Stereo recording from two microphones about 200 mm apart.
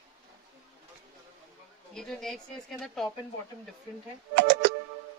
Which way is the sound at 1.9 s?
Centre (ahead or behind).